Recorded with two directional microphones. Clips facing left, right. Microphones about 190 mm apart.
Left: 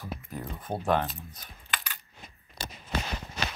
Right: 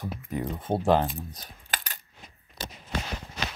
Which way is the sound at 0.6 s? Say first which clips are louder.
Right 4 dB; 25° right (ahead or behind).